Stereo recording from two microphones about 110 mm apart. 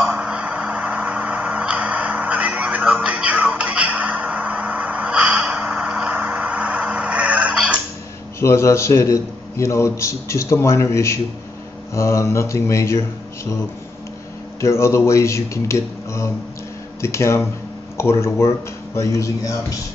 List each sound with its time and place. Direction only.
0.0 s a sound: 10° right (ahead or behind)
8.4 s a man's voice: 25° left (ahead or behind)
14.6 s a man's voice: 25° left (ahead or behind)